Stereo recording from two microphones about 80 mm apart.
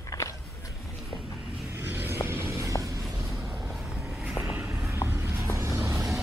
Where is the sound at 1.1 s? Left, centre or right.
Left.